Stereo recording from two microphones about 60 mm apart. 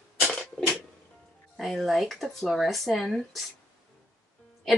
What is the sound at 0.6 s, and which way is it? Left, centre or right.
Music, centre.